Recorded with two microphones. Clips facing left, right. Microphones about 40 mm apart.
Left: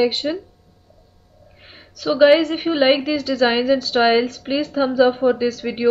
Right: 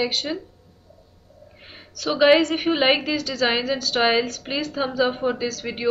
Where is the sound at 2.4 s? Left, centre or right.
Centre.